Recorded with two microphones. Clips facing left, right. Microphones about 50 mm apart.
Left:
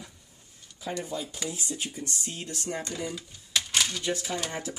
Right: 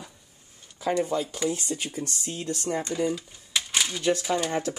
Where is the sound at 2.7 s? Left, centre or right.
Centre.